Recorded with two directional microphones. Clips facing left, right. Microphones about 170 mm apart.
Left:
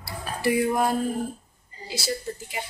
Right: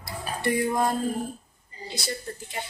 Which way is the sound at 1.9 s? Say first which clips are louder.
Left 4 dB; 5° left (ahead or behind).